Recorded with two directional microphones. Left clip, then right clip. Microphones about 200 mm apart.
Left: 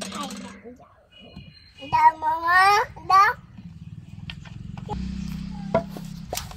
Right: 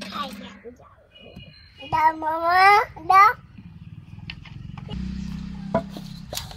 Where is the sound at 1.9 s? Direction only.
30° right (ahead or behind).